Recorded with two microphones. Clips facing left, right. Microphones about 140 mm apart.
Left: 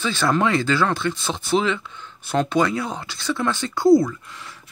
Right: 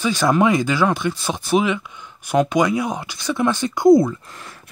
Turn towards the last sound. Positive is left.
turn(degrees=-50)  # may be behind; listen again after turning